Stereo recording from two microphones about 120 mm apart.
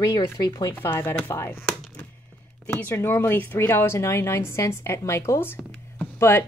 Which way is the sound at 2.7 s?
15° left (ahead or behind).